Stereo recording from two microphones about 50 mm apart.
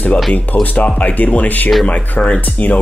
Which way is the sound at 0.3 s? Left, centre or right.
Left.